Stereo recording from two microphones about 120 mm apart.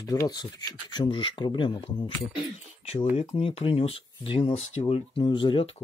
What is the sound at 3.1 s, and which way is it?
Speech, 55° left (ahead or behind).